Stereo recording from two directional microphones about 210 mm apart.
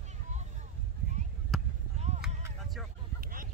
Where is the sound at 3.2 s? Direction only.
40° right (ahead or behind).